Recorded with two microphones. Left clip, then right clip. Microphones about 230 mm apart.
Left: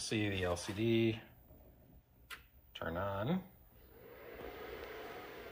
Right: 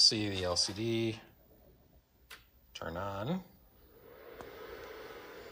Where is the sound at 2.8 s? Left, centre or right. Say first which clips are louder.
Even; centre.